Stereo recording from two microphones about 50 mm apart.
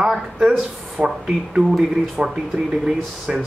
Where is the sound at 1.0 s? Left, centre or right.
Right.